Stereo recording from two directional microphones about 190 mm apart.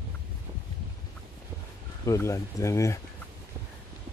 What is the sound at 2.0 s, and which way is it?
Speech, 15° left (ahead or behind).